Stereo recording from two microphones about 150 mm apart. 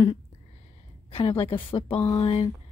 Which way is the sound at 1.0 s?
40° left (ahead or behind).